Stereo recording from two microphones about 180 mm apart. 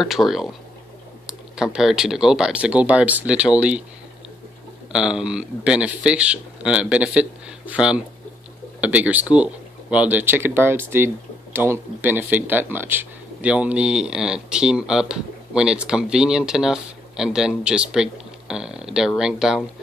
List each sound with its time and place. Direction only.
0.0 s speech: centre (ahead or behind)
4.9 s speech: 5° right (ahead or behind)